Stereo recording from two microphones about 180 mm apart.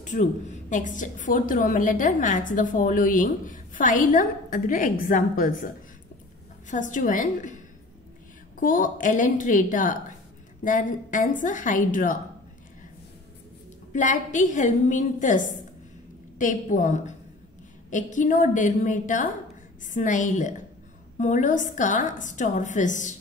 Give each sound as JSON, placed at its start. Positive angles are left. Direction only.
{"t": 0.0, "sound": "a woman's voice", "side_deg": 45}
{"t": 6.7, "sound": "a woman's voice", "side_deg": 45}
{"t": 13.9, "sound": "a woman's voice", "side_deg": 45}